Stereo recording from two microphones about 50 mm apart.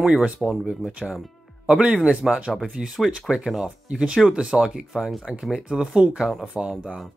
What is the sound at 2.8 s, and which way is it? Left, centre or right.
Speech, right.